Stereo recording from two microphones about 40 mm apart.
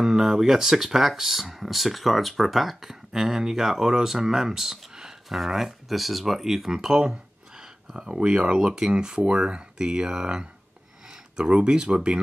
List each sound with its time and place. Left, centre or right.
0.0 s speech: centre
7.9 s speech: right
8.4 s speech: centre